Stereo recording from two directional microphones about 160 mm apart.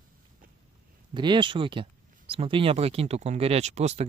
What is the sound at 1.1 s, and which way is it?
Speech, 30° right (ahead or behind).